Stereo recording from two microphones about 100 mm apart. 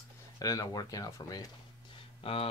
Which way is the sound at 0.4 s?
35° left (ahead or behind).